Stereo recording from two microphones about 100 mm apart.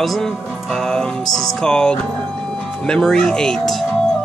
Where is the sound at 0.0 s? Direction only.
Centre (ahead or behind).